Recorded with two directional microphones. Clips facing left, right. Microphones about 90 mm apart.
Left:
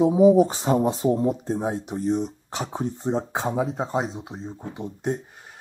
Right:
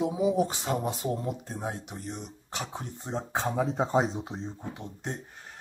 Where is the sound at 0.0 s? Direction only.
35° left (ahead or behind).